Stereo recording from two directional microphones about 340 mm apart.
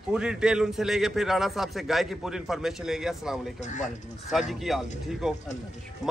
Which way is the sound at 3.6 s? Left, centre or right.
Left.